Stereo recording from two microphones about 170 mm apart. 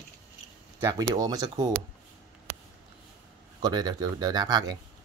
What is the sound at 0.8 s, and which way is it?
Speech, 20° right (ahead or behind).